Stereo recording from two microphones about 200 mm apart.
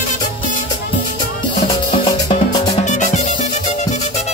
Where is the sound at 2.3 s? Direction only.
35° left (ahead or behind).